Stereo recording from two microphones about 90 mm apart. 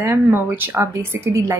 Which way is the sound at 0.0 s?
25° right (ahead or behind).